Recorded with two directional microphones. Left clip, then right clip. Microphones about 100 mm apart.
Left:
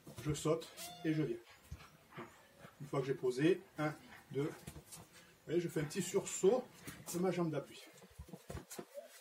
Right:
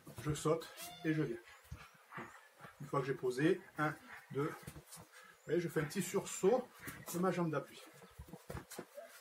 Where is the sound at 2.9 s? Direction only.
5° left (ahead or behind).